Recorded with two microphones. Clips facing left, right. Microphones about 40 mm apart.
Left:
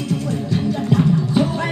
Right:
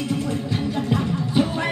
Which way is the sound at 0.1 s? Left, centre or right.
Centre.